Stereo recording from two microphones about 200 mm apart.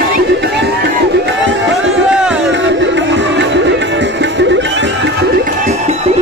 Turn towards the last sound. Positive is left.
turn(degrees=-40)  # may be behind; listen again after turning